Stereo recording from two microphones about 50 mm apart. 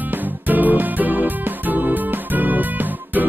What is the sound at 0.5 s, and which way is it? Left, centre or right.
Music, right.